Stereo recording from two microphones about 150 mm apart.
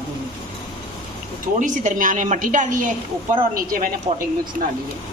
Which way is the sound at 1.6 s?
60° right (ahead or behind).